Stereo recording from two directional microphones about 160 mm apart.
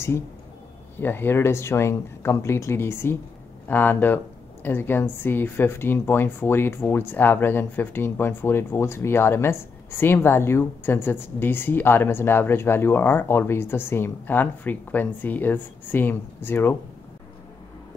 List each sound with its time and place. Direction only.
0.9 s speech: 15° left (ahead or behind)